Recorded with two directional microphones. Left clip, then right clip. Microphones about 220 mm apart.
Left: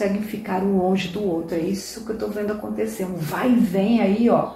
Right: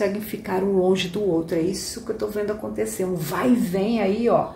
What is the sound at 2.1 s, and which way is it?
A woman's voice, 45° right (ahead or behind).